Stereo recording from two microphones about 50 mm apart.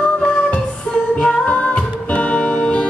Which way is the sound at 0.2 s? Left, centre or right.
Centre.